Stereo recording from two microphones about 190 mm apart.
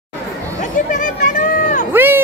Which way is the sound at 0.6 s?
40° left (ahead or behind).